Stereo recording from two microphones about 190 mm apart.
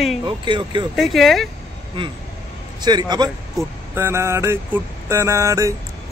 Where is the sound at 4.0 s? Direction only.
15° right (ahead or behind).